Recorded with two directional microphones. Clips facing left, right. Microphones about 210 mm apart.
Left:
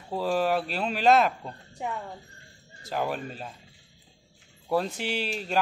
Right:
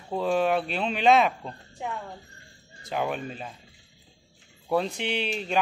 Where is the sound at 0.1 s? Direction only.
5° left (ahead or behind).